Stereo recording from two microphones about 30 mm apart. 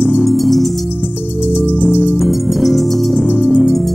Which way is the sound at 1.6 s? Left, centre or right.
Left.